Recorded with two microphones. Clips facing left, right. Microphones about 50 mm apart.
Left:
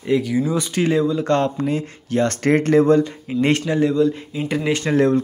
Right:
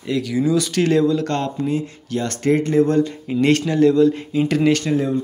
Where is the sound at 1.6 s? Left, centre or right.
Left.